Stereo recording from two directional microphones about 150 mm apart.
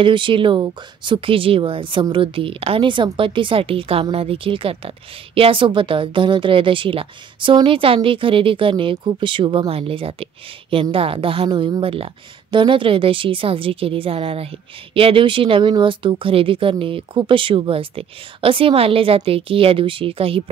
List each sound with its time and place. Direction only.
0.0 s speech: 35° right (ahead or behind)